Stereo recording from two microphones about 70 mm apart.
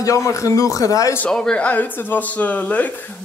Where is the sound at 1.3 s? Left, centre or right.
Centre.